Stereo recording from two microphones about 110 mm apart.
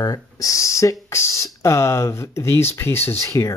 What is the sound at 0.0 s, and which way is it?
Speech, 30° left (ahead or behind).